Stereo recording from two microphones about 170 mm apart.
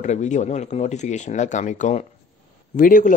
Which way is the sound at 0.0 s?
45° left (ahead or behind).